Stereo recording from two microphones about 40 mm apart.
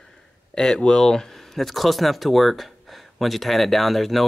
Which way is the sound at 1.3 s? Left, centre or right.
Centre.